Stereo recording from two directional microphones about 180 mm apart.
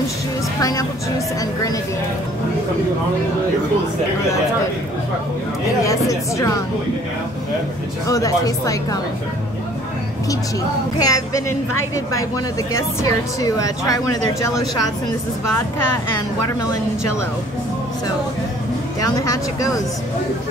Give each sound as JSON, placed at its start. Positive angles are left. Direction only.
{"t": 0.6, "sound": "speech", "side_deg": 20}
{"t": 5.9, "sound": "speech", "side_deg": 15}
{"t": 8.1, "sound": "speech", "side_deg": 20}
{"t": 11.0, "sound": "speech", "side_deg": 20}
{"t": 13.0, "sound": "speech", "side_deg": 20}
{"t": 19.2, "sound": "speech", "side_deg": 20}